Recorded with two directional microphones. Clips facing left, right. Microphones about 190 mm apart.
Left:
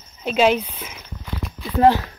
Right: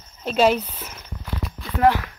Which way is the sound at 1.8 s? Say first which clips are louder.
Left 3 dB; 30° left (ahead or behind).